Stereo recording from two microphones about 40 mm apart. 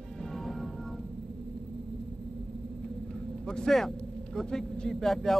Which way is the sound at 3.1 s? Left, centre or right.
Centre.